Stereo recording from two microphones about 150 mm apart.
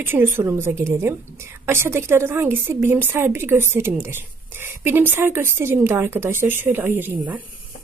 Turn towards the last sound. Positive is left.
turn(degrees=-10)  # may be behind; listen again after turning